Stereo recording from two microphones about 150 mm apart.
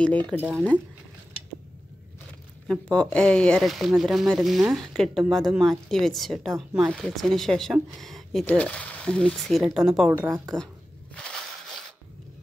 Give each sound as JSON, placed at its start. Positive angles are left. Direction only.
{"t": 0.0, "sound": "speech", "side_deg": 10}
{"t": 0.4, "sound": "a woman's voice", "side_deg": -10}
{"t": 2.7, "sound": "speech", "side_deg": 5}
{"t": 10.1, "sound": "a woman's voice", "side_deg": -15}
{"t": 11.1, "sound": "a sound", "side_deg": 5}